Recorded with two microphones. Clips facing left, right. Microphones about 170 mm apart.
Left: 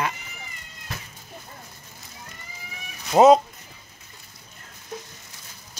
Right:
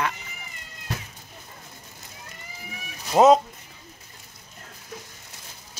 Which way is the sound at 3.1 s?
20° left (ahead or behind).